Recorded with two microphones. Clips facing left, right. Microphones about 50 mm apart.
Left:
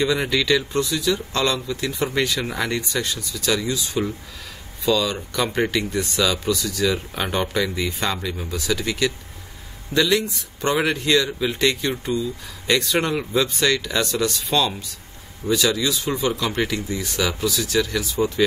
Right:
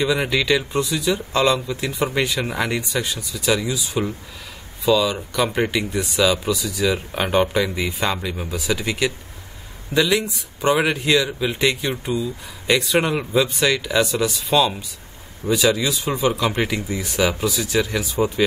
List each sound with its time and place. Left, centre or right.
0.0 s speech: centre